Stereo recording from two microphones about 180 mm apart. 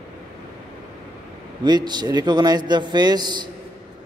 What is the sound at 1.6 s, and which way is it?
A man's voice, 25° right (ahead or behind).